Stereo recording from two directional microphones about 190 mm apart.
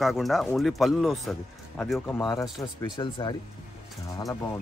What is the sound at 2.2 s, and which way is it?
Speech, 20° left (ahead or behind).